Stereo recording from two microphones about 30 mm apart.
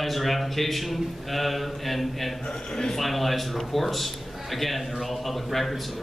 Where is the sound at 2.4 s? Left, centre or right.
Left.